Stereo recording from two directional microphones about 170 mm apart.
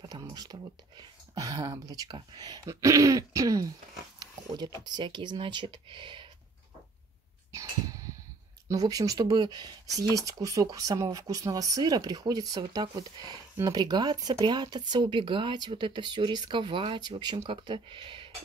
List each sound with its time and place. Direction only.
0.0 s speech: 20° right (ahead or behind)
4.8 s speech: 25° right (ahead or behind)
8.6 s speech: 20° right (ahead or behind)